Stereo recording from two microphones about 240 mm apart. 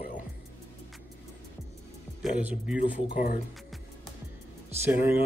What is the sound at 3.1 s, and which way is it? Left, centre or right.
Mantra, left.